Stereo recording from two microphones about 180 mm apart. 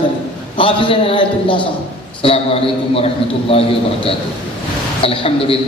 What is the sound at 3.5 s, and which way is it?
A man's voice, 30° left (ahead or behind).